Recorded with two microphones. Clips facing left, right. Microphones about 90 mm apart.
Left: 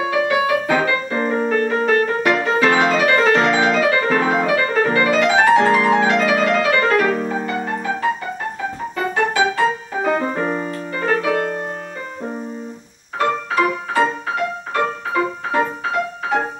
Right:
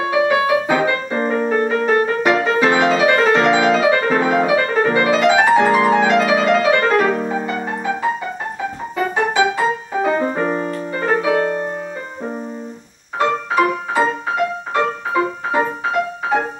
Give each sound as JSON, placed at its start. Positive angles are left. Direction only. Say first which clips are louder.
{"t": 0.1, "sound": "music", "louder": "right 3 dB", "side_deg": -15}
{"t": 13.2, "sound": "music", "louder": "right 2 dB", "side_deg": -15}